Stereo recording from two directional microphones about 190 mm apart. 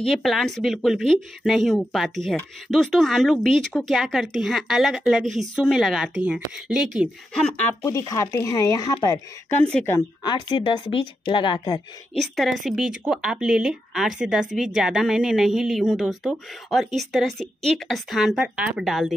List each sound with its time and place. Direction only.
0.0 s speech: centre (ahead or behind)
7.4 s speech: 5° left (ahead or behind)
7.8 s speech: 20° left (ahead or behind)
9.7 s speech: 5° left (ahead or behind)
9.9 s speech: 20° left (ahead or behind)
12.2 s speech: centre (ahead or behind)